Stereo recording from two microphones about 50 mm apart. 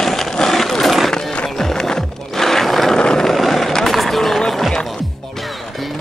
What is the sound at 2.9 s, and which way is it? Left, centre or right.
Vehicle, centre.